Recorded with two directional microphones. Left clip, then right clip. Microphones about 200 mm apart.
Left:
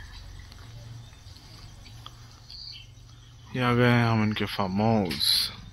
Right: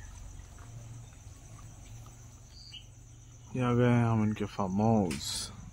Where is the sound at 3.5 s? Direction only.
5° left (ahead or behind).